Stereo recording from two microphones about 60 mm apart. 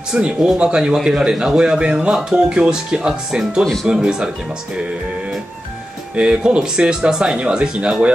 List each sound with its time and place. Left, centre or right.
0.1 s speech: centre
6.1 s speech: centre